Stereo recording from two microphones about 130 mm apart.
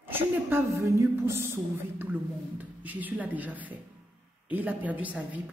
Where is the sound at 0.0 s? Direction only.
15° right (ahead or behind).